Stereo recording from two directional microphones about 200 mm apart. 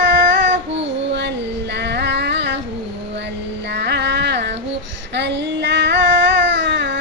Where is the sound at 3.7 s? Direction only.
60° right (ahead or behind).